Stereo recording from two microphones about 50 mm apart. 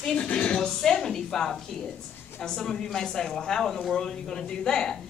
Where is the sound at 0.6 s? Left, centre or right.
Centre.